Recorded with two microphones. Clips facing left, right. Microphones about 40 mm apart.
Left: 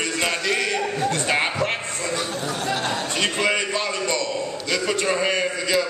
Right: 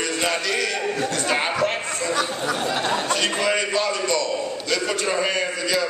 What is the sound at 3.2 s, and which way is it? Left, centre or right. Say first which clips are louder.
A man's voice: even; centre.